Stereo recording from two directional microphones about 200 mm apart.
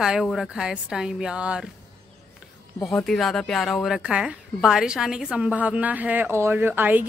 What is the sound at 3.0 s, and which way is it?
Speech, centre (ahead or behind).